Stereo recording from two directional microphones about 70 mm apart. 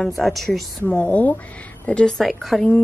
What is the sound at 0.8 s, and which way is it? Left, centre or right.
A woman's voice, centre.